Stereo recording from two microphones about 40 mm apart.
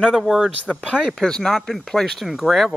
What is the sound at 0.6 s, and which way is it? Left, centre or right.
Speech, left.